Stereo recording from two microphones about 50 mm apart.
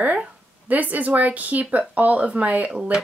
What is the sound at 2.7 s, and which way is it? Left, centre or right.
Speech, centre.